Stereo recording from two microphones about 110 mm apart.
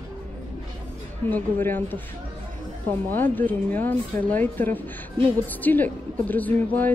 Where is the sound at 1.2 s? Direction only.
15° left (ahead or behind).